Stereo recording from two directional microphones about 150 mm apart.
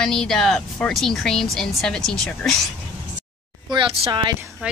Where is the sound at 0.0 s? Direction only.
5° left (ahead or behind).